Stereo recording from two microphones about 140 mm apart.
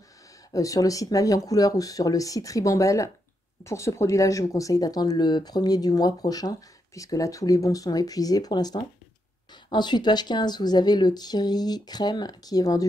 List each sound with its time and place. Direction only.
0.5 s speech: 25° left (ahead or behind)